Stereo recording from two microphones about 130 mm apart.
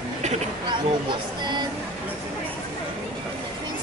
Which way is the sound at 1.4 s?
35° right (ahead or behind).